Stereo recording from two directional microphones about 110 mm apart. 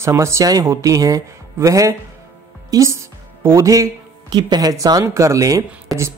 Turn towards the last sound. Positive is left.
turn(degrees=-30)  # may be behind; listen again after turning